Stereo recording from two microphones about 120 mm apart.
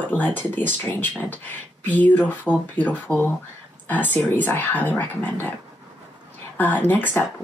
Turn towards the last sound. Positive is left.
turn(degrees=15)  # may be behind; listen again after turning